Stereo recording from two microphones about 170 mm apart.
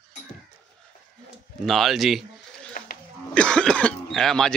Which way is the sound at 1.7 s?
Centre (ahead or behind).